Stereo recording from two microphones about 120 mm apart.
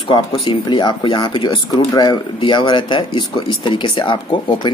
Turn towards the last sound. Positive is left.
turn(degrees=45)  # may be behind; listen again after turning